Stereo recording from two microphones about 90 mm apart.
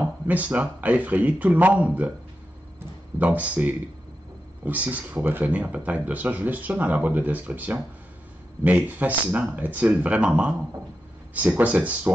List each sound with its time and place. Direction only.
0.3 s speech: 15° right (ahead or behind)
2.8 s a sound: 15° right (ahead or behind)
4.6 s speech: 15° right (ahead or behind)